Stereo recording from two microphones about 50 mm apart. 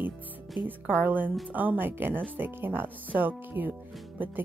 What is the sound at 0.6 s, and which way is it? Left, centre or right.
Speech, right.